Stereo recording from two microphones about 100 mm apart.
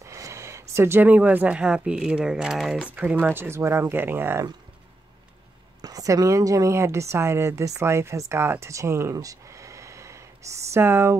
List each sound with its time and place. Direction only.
0.0 s speech: 30° right (ahead or behind); by 2.8 s 5° right (ahead or behind)
2.9 s speech: 15° right (ahead or behind)
5.8 s a woman's voice: 35° right (ahead or behind)